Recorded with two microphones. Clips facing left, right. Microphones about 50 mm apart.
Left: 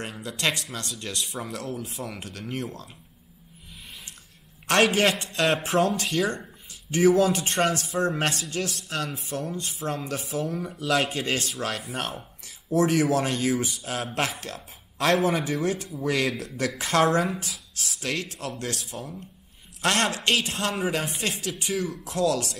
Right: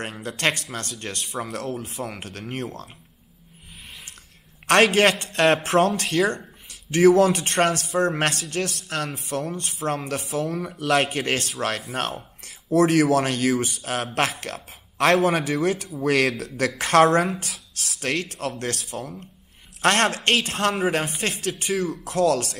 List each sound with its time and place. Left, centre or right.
0.0 s speech: right
4.6 s speech: right